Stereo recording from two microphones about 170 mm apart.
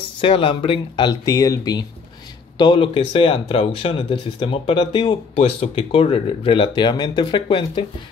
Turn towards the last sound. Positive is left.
turn(degrees=30)  # may be behind; listen again after turning